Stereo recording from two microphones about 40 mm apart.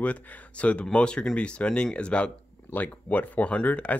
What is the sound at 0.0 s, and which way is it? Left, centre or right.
Speech, left.